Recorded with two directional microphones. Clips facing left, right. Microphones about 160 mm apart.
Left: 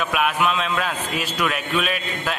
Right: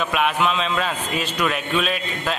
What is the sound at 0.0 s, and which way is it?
Speech, centre (ahead or behind).